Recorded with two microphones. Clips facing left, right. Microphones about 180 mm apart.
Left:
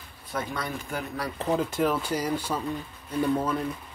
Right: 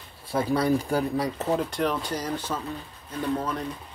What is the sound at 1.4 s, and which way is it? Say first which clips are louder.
Speech: left 4 dB; centre (ahead or behind).